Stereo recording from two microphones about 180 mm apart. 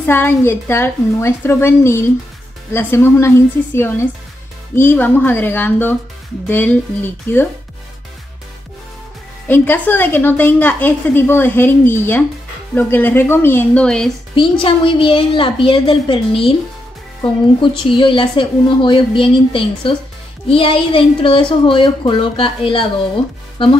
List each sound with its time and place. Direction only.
0.0 s a woman's voice: 10° left (ahead or behind)
9.5 s a woman's voice: 10° left (ahead or behind)
14.3 s speech: 30° left (ahead or behind)